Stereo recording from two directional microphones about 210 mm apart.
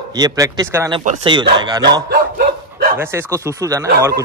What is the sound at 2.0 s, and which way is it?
Bow-wow, 45° right (ahead or behind).